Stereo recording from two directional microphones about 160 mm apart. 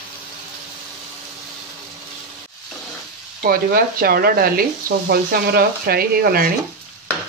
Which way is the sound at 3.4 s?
65° right (ahead or behind).